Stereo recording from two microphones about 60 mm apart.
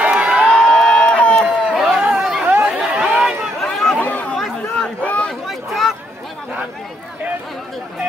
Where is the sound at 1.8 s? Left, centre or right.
Centre.